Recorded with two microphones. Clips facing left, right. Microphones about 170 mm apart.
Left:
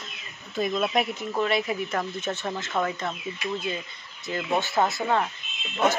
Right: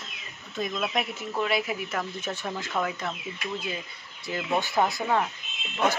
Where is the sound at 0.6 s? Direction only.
Centre (ahead or behind).